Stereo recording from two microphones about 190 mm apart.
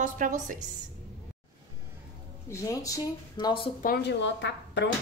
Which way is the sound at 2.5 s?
15° left (ahead or behind).